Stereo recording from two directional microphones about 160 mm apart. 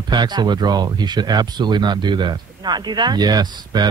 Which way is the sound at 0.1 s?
25° right (ahead or behind).